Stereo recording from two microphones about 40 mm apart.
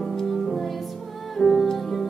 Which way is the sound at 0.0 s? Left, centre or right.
Centre.